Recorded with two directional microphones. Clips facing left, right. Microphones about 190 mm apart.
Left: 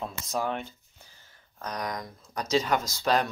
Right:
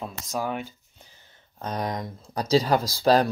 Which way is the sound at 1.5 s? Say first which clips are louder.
Right 4 dB; 25° right (ahead or behind).